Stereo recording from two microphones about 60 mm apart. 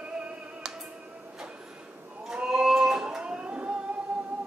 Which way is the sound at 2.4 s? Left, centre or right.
Centre.